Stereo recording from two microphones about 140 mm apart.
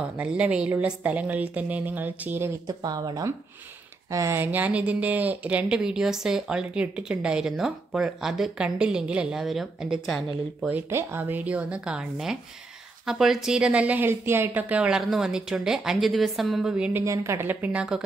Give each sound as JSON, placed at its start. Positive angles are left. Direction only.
{"t": 0.2, "sound": "speech", "side_deg": -10}
{"t": 2.6, "sound": "speech", "side_deg": -30}
{"t": 10.7, "sound": "speech", "side_deg": -15}
{"t": 17.0, "sound": "speech", "side_deg": -20}